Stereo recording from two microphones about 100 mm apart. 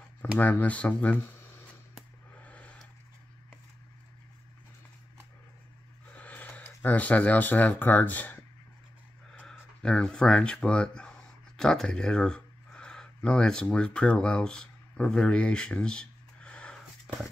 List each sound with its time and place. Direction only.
0.4 s speech: 15° left (ahead or behind)
2.4 s a sound: 15° left (ahead or behind)
6.1 s speech: 15° left (ahead or behind)
9.3 s speech: 5° left (ahead or behind)